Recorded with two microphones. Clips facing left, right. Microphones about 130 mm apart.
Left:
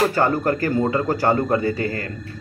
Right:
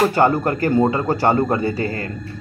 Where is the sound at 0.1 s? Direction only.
25° right (ahead or behind).